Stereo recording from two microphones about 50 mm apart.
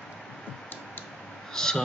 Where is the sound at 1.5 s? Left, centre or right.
Centre.